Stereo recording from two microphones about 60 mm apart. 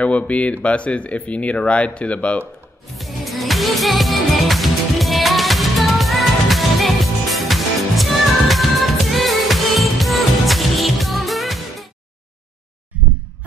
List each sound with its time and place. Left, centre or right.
0.0 s speech: left
3.0 s music: centre
12.9 s heart sounds: right